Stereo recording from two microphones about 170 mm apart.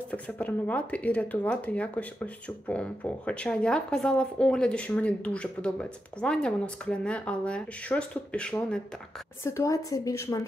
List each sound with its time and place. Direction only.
0.1 s speech: 10° left (ahead or behind)
9.4 s speech: 15° left (ahead or behind)